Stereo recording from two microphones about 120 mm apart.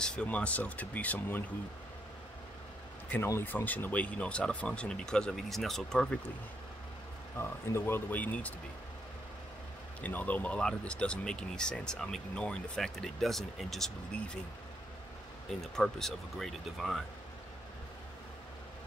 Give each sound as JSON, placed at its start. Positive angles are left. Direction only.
{"t": 0.0, "sound": "speech", "side_deg": 10}
{"t": 3.1, "sound": "speech", "side_deg": 20}
{"t": 7.3, "sound": "speech", "side_deg": 20}
{"t": 10.0, "sound": "speech", "side_deg": 15}
{"t": 15.6, "sound": "speech", "side_deg": 5}